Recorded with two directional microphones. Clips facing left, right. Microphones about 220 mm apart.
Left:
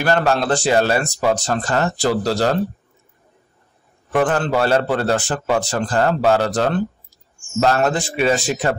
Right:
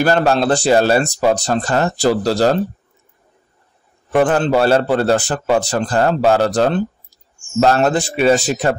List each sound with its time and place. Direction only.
0.0 s a man's voice: 30° right (ahead or behind)
4.1 s a man's voice: 30° right (ahead or behind)
7.3 s a sound: centre (ahead or behind)
7.6 s a man's voice: 35° right (ahead or behind)